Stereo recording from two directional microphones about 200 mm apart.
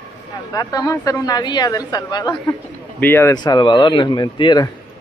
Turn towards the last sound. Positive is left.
turn(degrees=20)  # may be behind; listen again after turning